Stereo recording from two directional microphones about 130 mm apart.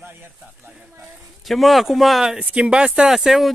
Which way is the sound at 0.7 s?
5° right (ahead or behind).